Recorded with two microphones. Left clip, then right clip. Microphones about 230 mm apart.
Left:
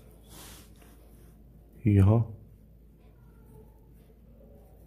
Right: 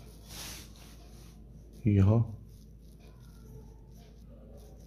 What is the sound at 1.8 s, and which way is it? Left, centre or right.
Speech, centre.